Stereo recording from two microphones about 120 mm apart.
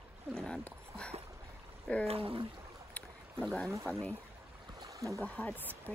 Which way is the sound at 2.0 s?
50° right (ahead or behind).